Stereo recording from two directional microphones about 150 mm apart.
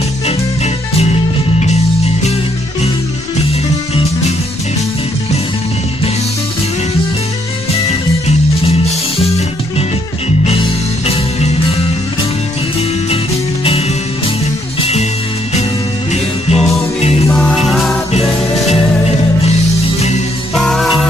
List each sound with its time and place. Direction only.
16.1 s music: 45° left (ahead or behind)
17.3 s music: centre (ahead or behind)
20.5 s music: centre (ahead or behind)